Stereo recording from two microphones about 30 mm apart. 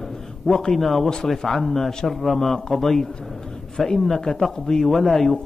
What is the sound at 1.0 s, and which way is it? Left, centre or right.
Speech, left.